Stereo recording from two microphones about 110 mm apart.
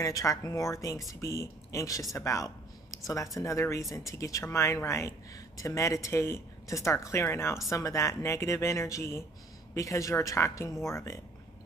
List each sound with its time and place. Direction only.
0.0 s speech: 30° left (ahead or behind)